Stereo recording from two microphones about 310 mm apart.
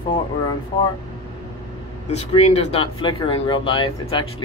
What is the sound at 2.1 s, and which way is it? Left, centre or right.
Speech, centre.